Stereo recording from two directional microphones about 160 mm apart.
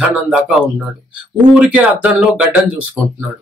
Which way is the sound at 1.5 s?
5° right (ahead or behind).